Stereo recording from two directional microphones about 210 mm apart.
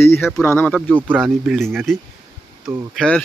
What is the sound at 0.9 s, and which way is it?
Speech, 5° right (ahead or behind).